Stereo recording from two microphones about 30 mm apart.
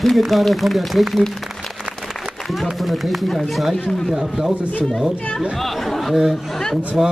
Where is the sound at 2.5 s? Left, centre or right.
Centre.